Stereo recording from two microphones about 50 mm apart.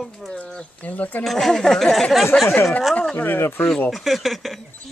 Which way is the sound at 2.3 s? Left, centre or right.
Left.